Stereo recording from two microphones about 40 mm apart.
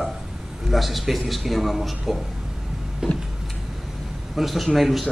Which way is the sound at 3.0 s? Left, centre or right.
Right.